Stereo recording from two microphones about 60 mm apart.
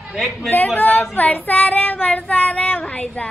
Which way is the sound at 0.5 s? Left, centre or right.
Left.